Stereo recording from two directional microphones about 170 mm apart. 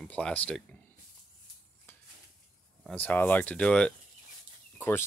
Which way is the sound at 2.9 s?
10° left (ahead or behind).